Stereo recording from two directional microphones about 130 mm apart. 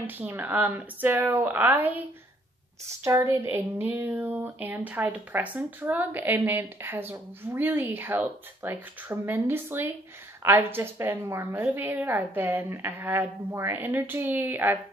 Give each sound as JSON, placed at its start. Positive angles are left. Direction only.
{"t": 0.0, "sound": "speech", "side_deg": -15}